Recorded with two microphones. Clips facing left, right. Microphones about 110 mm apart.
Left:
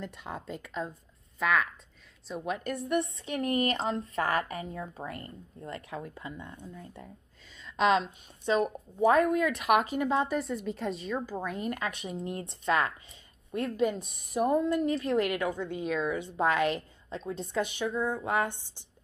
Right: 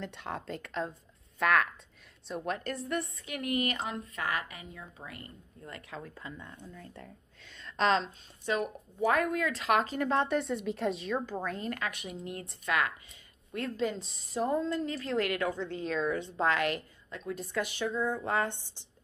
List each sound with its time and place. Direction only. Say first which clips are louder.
0.0 s a woman's voice: right 1 dB; centre (ahead or behind); by 5.3 s 40° left (ahead or behind)
5.6 s a woman's voice: left 5 dB; 25° left (ahead or behind); by 8.1 s 10° left (ahead or behind)
8.5 s a woman's voice: left 5 dB; 25° left (ahead or behind); by 11.3 s centre (ahead or behind)
11.4 s a woman's voice: left 2 dB; 15° left (ahead or behind)
13.5 s a woman's voice: left 4 dB; 20° left (ahead or behind)